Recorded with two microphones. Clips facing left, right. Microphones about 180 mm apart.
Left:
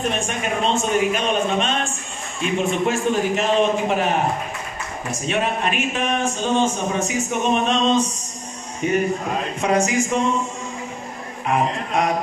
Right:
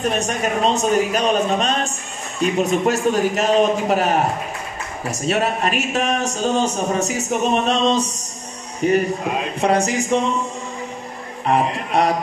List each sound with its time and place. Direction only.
0.1 s speech: 40° right (ahead or behind)
5.1 s speech: 40° right (ahead or behind)
11.4 s speech: 35° right (ahead or behind)